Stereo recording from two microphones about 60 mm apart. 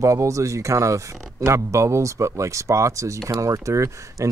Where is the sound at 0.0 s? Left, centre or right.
Right.